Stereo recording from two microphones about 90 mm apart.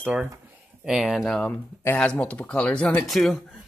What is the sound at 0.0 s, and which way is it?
Speech, 15° right (ahead or behind).